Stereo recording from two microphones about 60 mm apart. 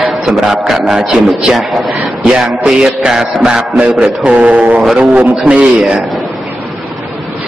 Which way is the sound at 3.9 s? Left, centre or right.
Right.